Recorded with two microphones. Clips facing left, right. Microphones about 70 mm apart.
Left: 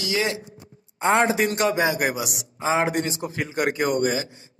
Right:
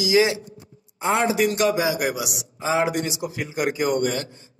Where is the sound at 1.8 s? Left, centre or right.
Centre.